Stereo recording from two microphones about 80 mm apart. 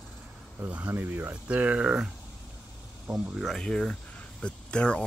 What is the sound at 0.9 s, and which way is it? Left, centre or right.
Speech, right.